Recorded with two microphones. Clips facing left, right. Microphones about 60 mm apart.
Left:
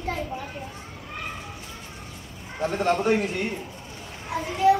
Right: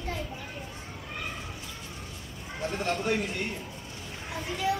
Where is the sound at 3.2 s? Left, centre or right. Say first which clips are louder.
Left 5 dB; centre.